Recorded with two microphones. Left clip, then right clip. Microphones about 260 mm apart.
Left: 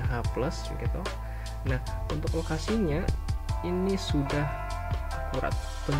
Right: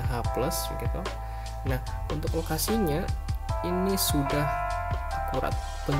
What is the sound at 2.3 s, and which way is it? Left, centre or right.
Speech, centre.